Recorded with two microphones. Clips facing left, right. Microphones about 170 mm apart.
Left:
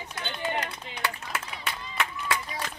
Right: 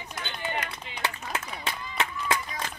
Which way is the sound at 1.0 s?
25° right (ahead or behind).